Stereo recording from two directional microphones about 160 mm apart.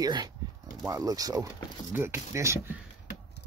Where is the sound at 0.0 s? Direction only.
25° right (ahead or behind).